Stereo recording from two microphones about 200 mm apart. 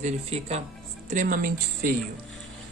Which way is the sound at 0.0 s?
30° right (ahead or behind).